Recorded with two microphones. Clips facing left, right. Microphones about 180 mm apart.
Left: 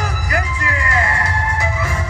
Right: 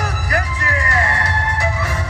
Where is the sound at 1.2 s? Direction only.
70° right (ahead or behind).